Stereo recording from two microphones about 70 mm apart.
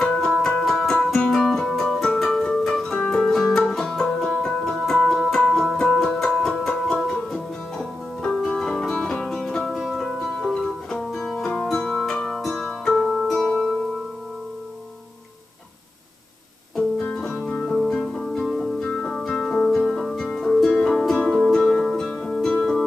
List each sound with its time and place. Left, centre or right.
0.0 s music: centre
12.4 s music: centre
16.7 s music: centre
17.7 s music: centre